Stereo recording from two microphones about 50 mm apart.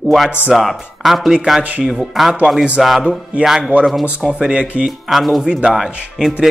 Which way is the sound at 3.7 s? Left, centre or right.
Right.